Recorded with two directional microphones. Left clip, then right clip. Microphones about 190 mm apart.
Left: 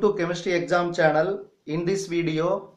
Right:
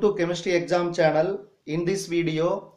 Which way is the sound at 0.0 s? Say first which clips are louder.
Even; 10° right (ahead or behind).